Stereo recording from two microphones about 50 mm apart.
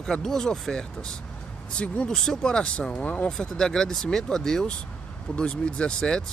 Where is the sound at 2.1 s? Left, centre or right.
Centre.